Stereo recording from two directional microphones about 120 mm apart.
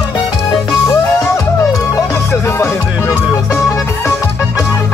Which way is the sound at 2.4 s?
20° left (ahead or behind).